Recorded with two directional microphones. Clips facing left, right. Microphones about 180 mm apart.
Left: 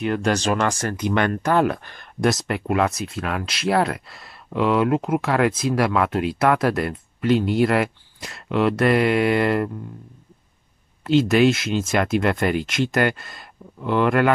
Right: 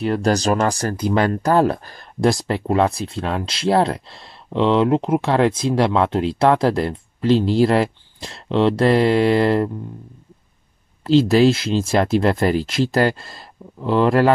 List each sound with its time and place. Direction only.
0.0 s speech: 35° right (ahead or behind)
11.1 s speech: 30° right (ahead or behind)